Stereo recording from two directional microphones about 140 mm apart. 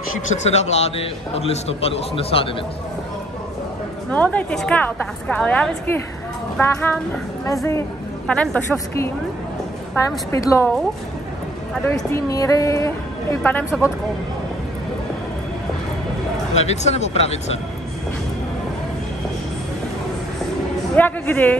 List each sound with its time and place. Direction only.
0.3 s a man's voice: 55° left (ahead or behind)
4.1 s a woman's voice: 10° left (ahead or behind)
8.3 s a woman's voice: 5° left (ahead or behind)
8.7 s a woman's voice: 20° left (ahead or behind)
10.3 s a woman's voice: 20° left (ahead or behind)
11.8 s a woman's voice: 20° left (ahead or behind)
16.5 s a man's voice: 50° left (ahead or behind)
20.9 s speech: 10° left (ahead or behind)